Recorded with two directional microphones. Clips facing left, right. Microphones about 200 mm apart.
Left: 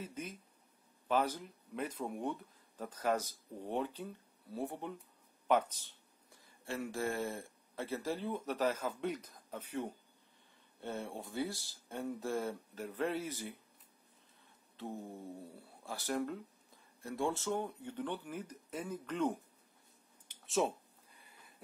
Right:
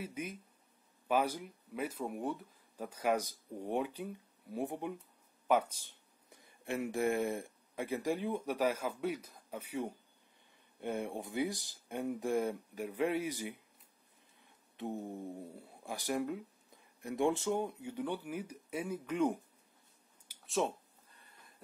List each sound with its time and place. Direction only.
0.0 s speech: 10° right (ahead or behind)
14.8 s speech: 20° right (ahead or behind)
20.2 s a sound: centre (ahead or behind)